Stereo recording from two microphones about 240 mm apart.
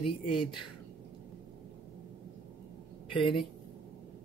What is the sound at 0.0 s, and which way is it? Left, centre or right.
Speech, left.